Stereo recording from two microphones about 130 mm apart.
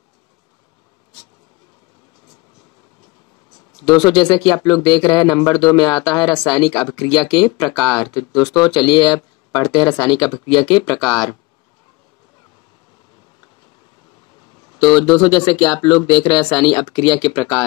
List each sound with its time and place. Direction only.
3.8 s speech: 35° left (ahead or behind)
11.1 s speech: centre (ahead or behind)
14.7 s speech: 35° left (ahead or behind)